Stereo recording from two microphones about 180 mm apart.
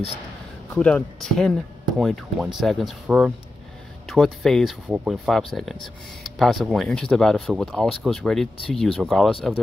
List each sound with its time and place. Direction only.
0.7 s speech: 5° left (ahead or behind)